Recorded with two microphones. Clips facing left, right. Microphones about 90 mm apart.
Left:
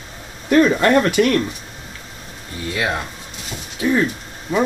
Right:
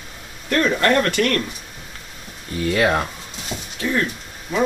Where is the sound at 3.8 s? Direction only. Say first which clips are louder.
Left 4 dB; 10° left (ahead or behind).